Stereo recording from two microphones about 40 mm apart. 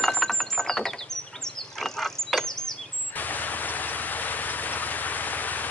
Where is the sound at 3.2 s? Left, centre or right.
Left.